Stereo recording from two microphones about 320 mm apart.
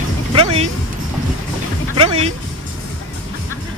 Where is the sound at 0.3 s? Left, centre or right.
Centre.